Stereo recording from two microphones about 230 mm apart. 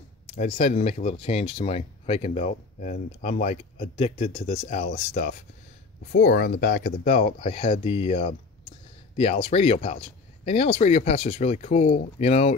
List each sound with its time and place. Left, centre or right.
0.4 s speech: left
7.1 s speech: left